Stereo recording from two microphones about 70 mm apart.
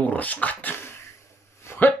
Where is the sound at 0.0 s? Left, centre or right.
Left.